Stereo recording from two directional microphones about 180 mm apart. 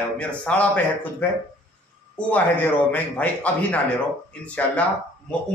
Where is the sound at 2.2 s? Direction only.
10° left (ahead or behind).